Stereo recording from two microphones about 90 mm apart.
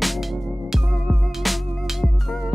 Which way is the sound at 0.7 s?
Centre (ahead or behind).